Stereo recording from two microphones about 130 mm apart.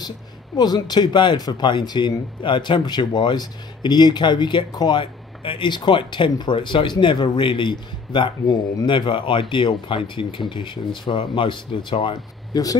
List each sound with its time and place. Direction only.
0.6 s speech: 35° left (ahead or behind)